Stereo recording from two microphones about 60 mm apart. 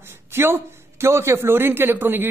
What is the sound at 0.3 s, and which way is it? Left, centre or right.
A man's voice, right.